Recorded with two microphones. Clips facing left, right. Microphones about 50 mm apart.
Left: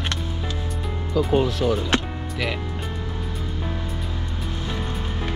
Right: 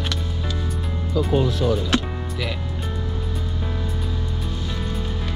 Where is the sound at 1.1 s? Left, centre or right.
Left.